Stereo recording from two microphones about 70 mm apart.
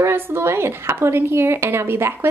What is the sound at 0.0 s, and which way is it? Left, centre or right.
Speech, right.